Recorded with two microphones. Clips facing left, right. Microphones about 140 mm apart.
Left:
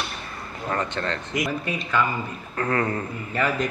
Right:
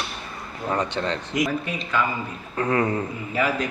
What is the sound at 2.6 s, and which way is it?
Speech, 15° right (ahead or behind).